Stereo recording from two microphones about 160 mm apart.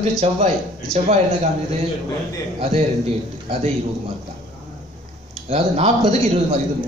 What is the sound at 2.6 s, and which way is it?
Speech, 40° right (ahead or behind).